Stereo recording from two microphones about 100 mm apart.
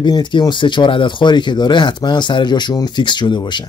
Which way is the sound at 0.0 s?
50° left (ahead or behind).